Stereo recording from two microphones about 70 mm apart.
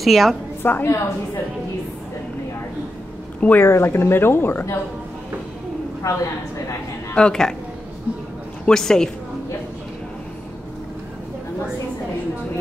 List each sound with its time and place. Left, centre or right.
0.0 s a woman's voice: centre
0.6 s a woman's voice: left
3.3 s speech: left
3.6 s speech: left
6.0 s a woman's voice: left
7.2 s speech: centre
8.6 s a woman's voice: centre